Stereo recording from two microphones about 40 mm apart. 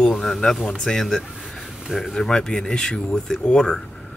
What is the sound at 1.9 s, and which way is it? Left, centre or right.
Speech, centre.